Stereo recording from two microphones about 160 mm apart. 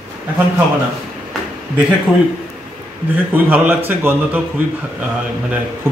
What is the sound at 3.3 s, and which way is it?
A woman's voice, 10° right (ahead or behind).